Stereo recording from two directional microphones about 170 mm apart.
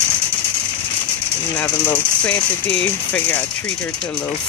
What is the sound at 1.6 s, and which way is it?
Speech, 10° left (ahead or behind).